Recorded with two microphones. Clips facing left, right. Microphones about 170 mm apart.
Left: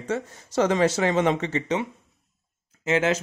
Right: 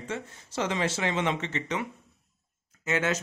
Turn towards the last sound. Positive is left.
turn(degrees=25)  # may be behind; listen again after turning